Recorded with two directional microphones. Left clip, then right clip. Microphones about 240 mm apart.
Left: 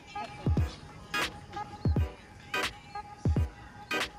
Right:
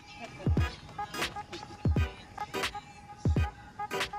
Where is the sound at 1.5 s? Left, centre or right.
Right.